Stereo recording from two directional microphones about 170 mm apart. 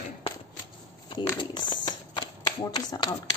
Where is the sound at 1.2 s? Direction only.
25° left (ahead or behind).